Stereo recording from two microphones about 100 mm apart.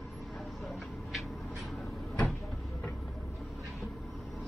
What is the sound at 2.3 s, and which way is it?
Vehicle, centre (ahead or behind).